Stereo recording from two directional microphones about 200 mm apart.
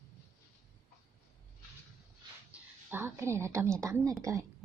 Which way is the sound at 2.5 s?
10° right (ahead or behind).